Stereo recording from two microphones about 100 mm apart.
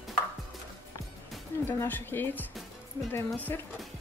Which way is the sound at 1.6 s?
20° left (ahead or behind).